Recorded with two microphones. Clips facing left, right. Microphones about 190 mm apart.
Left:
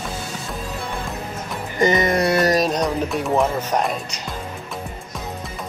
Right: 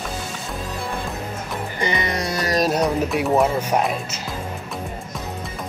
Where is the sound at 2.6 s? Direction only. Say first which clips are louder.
Right 1 dB; 5° right (ahead or behind).